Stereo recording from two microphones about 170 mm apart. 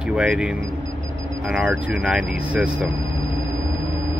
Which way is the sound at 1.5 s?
5° right (ahead or behind).